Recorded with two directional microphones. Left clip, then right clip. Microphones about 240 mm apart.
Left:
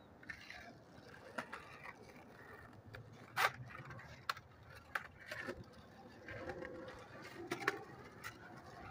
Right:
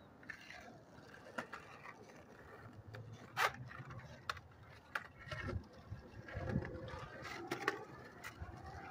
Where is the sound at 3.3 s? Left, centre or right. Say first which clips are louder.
Left 1 dB; centre.